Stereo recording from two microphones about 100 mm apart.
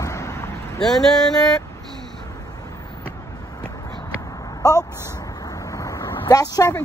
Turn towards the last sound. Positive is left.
turn(degrees=35)  # may be behind; listen again after turning